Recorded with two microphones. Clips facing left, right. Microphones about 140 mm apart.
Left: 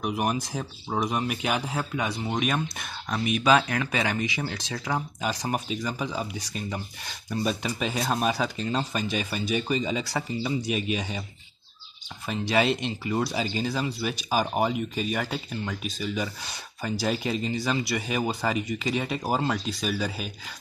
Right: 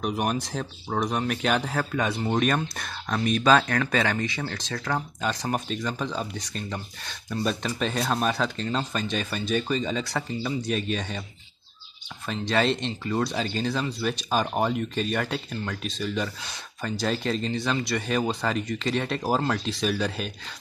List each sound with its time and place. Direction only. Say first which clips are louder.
0.0 s speech: even; 5° left (ahead or behind)
12.3 s speech: even; 10° left (ahead or behind)